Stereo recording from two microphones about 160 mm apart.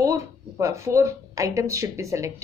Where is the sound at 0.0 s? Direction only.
20° right (ahead or behind).